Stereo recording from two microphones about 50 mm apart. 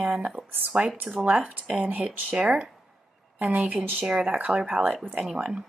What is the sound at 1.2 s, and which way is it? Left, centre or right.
Speech, right.